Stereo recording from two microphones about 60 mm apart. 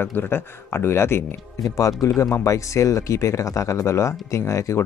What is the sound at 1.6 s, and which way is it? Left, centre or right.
Speech, left.